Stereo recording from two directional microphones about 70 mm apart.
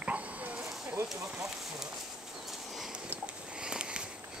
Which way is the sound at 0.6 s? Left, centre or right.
Centre.